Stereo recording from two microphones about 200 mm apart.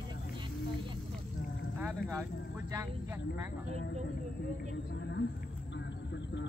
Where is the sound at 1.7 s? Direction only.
5° right (ahead or behind).